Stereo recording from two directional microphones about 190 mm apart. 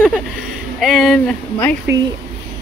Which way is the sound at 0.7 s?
Centre (ahead or behind).